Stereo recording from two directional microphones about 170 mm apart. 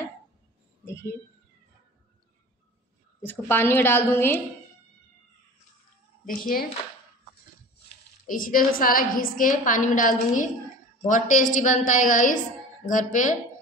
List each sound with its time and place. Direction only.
0.8 s a sound: 15° left (ahead or behind)
3.2 s a woman's voice: 15° left (ahead or behind)
6.2 s speech: 55° left (ahead or behind)
8.3 s a woman's voice: 55° left (ahead or behind)